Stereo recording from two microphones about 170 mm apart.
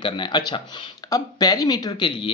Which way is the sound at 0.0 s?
25° left (ahead or behind).